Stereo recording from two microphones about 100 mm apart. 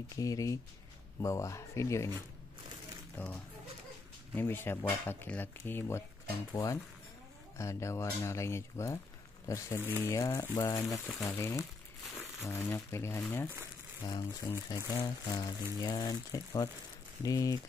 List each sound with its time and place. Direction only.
0.1 s speech: 35° left (ahead or behind)
3.2 s speech: 20° left (ahead or behind)
4.4 s speech: 20° left (ahead or behind)
14.0 s speech: 40° left (ahead or behind)